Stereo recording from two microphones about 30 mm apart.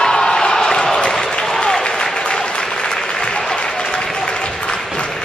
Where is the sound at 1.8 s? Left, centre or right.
Left.